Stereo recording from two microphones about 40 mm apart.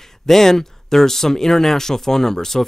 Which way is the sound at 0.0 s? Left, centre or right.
Centre.